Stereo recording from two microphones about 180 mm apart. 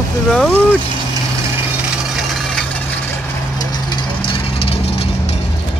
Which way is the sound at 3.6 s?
25° left (ahead or behind).